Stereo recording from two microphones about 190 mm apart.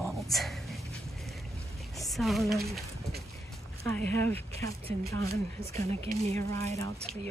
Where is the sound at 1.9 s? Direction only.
Centre (ahead or behind).